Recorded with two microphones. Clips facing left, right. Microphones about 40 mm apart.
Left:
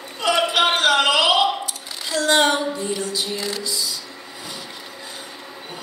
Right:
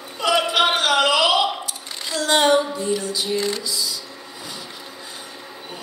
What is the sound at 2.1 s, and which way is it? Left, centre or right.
Female singing, centre.